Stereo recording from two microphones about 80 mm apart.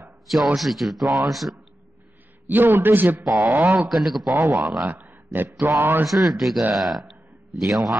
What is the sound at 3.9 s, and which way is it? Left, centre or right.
Speech, centre.